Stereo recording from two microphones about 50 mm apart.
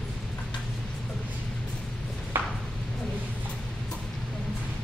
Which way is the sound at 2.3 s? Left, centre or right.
Right.